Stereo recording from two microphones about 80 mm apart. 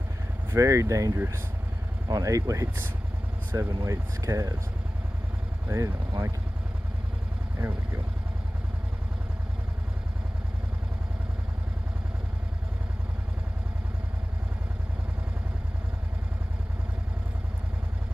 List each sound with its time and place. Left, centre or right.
0.5 s speech: right
1.1 s speech: right
2.0 s speech: right
5.7 s speech: right